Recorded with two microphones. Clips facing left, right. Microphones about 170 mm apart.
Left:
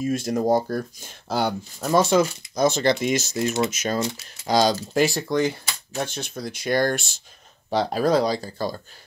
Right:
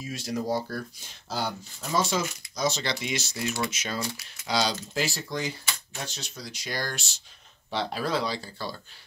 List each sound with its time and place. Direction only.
0.0 s speech: 50° left (ahead or behind)
4.0 s speech: 20° left (ahead or behind)
4.5 s speech: 45° left (ahead or behind)
7.7 s speech: 45° left (ahead or behind)